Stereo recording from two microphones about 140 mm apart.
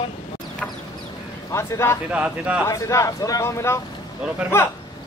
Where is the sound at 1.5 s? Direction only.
20° left (ahead or behind).